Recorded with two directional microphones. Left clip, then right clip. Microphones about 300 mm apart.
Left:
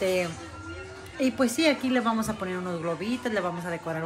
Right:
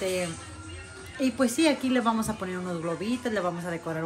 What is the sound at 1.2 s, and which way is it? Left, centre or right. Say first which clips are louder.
A woman's voice: left 1 dB; centre.